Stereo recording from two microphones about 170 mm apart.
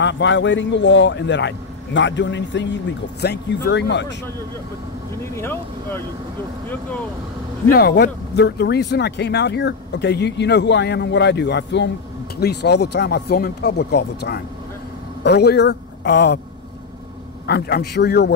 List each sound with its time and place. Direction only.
0.0 s a man's voice: 90° left
5.2 s speech: 15° left (ahead or behind)
7.7 s speech: 70° left (ahead or behind); by 11.9 s 90° left
12.4 s a man's voice: 75° left (ahead or behind)
17.5 s speech: 75° left (ahead or behind)